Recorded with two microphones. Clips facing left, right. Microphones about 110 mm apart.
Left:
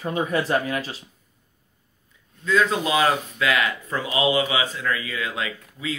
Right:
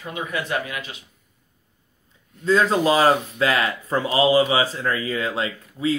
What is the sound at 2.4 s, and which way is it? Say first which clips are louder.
Speech: right 4 dB; 35° right (ahead or behind).